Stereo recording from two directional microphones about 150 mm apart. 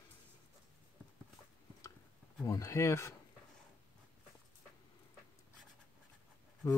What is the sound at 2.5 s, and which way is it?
Speech, 20° left (ahead or behind).